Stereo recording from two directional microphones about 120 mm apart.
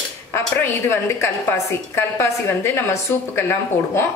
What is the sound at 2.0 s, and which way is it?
A woman's voice, 20° left (ahead or behind).